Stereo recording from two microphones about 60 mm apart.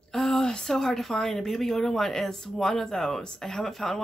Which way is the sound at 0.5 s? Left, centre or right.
Centre.